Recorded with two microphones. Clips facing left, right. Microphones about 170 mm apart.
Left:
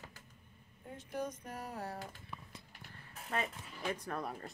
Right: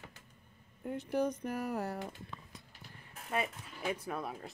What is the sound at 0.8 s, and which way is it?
Speech, 70° right (ahead or behind).